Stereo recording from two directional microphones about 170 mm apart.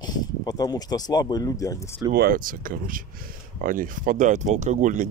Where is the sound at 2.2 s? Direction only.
55° right (ahead or behind).